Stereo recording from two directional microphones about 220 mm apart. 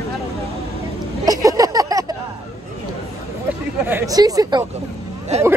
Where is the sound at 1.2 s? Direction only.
15° right (ahead or behind).